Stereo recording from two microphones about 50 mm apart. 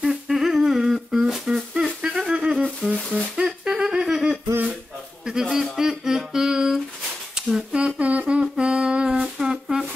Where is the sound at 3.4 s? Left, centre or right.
Centre.